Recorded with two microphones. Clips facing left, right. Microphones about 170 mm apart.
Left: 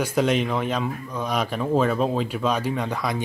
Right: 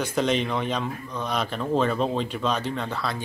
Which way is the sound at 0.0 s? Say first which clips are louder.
Left 2 dB; 10° left (ahead or behind).